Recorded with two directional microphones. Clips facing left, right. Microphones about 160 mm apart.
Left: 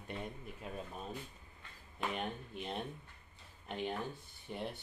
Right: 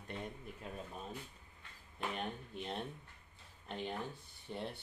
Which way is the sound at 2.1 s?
10° left (ahead or behind).